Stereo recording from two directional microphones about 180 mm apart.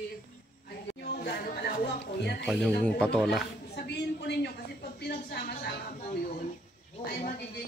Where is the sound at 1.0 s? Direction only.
65° left (ahead or behind).